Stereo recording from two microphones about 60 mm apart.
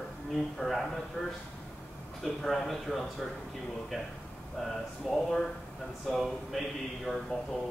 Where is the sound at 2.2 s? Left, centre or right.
Centre.